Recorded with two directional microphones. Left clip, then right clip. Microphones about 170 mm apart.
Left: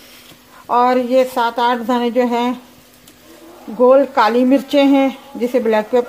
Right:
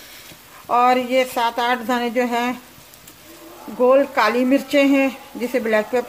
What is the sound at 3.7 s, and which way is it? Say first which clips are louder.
A woman's voice: left 4 dB; 20° left (ahead or behind).